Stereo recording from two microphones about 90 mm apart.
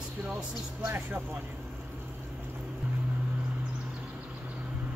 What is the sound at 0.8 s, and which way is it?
Speech, 25° right (ahead or behind).